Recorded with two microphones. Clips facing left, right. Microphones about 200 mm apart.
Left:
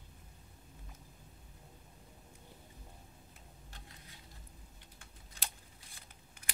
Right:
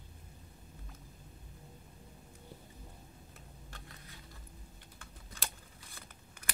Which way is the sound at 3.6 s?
60° right (ahead or behind).